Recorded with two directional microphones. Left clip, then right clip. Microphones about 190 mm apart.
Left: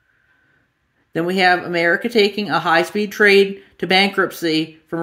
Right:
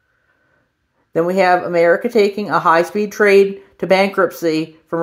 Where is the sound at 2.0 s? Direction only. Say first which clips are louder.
Right 2 dB; 10° left (ahead or behind).